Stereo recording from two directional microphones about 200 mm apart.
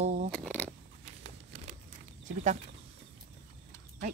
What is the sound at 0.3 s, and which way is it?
Zipper, 5° left (ahead or behind).